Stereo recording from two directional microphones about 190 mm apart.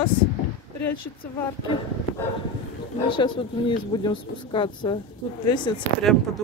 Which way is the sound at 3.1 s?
25° left (ahead or behind).